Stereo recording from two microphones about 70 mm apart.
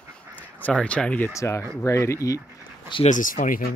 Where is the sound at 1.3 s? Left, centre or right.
Left.